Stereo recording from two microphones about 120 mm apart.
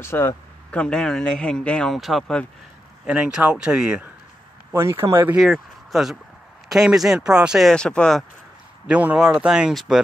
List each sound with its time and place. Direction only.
0.0 s speech: 20° left (ahead or behind)
0.7 s a man's voice: 10° left (ahead or behind); by 4.1 s 5° right (ahead or behind)
4.7 s speech: 20° right (ahead or behind)
5.4 s speech: centre (ahead or behind)
8.8 s speech: 10° right (ahead or behind)